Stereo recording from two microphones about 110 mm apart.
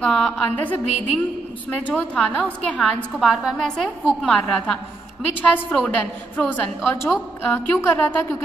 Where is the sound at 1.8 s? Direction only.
15° left (ahead or behind).